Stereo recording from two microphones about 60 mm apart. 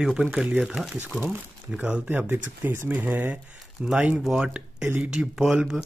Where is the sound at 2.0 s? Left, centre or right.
Right.